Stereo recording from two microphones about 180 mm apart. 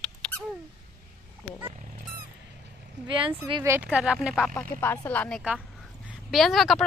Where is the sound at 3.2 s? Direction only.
25° right (ahead or behind).